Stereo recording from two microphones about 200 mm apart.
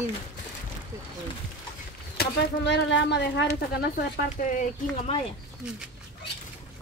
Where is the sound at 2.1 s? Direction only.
55° left (ahead or behind).